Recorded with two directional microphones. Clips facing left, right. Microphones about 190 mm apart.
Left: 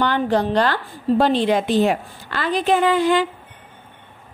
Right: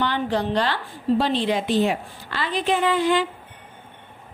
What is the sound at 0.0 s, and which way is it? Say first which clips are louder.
A woman's voice: left 4 dB; 50° left (ahead or behind).